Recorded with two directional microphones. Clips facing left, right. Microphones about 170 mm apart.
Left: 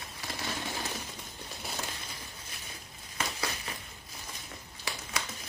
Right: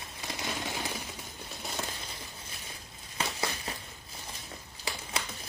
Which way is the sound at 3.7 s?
30° right (ahead or behind).